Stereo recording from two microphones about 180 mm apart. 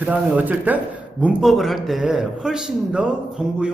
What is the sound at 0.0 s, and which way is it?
A man's voice, 10° right (ahead or behind).